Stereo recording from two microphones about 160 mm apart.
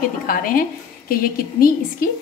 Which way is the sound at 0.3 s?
65° left (ahead or behind).